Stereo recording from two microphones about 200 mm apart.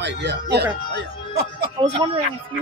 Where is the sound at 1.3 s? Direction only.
25° right (ahead or behind).